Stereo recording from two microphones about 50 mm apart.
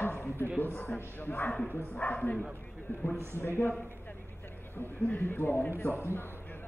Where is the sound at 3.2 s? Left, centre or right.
Left.